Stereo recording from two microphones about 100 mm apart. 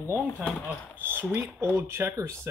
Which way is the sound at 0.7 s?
20° right (ahead or behind).